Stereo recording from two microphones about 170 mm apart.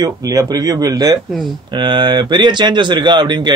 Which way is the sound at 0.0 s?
20° right (ahead or behind).